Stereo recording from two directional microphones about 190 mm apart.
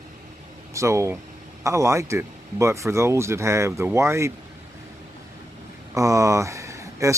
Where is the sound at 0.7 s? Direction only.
15° right (ahead or behind).